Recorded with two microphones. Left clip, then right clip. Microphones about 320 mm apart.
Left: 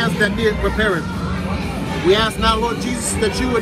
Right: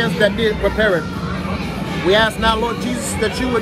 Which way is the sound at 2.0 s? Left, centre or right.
Centre.